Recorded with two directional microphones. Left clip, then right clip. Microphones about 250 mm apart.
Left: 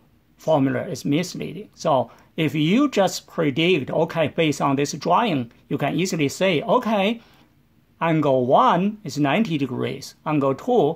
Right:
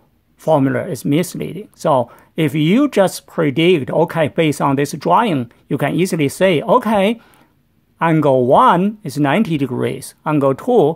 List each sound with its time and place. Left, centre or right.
0.4 s speech: right